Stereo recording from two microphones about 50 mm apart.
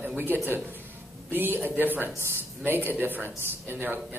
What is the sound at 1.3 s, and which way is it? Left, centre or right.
A man's voice, right.